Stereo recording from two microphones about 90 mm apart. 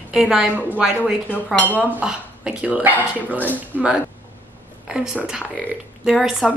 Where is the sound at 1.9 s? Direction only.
15° right (ahead or behind).